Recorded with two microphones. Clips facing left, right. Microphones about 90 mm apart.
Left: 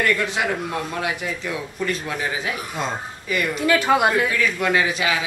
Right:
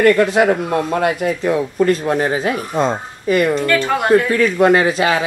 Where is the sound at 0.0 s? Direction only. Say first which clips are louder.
Right 10 dB; 45° right (ahead or behind).